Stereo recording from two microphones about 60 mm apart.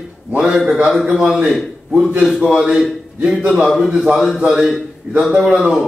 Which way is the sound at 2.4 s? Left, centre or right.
Centre.